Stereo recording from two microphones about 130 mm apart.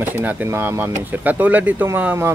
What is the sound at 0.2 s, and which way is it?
Speech, 15° right (ahead or behind).